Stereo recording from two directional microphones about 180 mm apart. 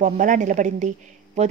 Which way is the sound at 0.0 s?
45° right (ahead or behind).